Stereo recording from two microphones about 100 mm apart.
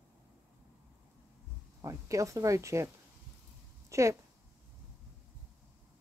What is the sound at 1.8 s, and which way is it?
A woman's voice, 30° right (ahead or behind).